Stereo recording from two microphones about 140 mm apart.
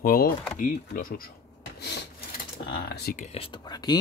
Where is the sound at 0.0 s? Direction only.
90° left.